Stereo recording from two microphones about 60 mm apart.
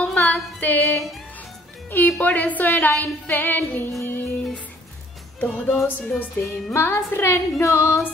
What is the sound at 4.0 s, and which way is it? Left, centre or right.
Music, left.